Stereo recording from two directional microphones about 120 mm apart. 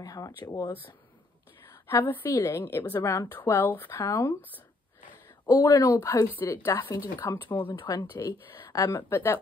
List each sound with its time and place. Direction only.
0.0 s a woman's voice: 30° left (ahead or behind)
1.7 s a woman's voice: 20° left (ahead or behind)
5.5 s a woman's voice: 30° left (ahead or behind)
7.5 s a woman's voice: 40° left (ahead or behind); by 9.4 s 20° left (ahead or behind)